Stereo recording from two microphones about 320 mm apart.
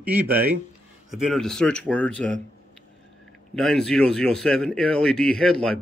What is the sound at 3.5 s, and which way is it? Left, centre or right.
Speech, centre.